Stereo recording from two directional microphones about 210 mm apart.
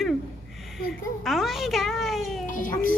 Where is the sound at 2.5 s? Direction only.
40° left (ahead or behind).